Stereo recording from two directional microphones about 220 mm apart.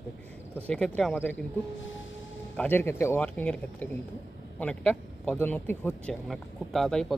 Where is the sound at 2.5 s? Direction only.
10° left (ahead or behind).